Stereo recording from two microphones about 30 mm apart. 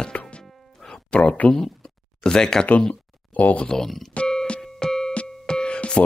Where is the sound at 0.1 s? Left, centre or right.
Left.